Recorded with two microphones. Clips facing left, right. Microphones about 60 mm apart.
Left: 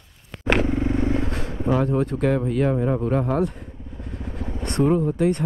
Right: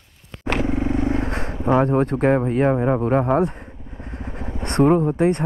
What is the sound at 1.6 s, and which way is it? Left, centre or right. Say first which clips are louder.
Speech: right 4 dB; right.